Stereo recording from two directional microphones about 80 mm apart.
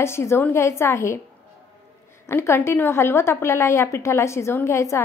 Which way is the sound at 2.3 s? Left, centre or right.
Left.